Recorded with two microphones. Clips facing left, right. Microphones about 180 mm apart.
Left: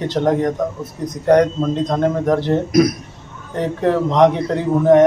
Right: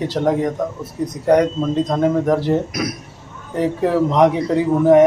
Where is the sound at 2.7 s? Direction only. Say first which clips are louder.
Left 10 dB; 40° left (ahead or behind).